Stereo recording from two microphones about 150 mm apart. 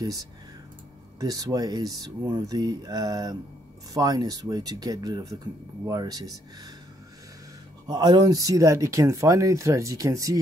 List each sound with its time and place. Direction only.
1.2 s speech: 25° right (ahead or behind)
7.8 s speech: 30° right (ahead or behind)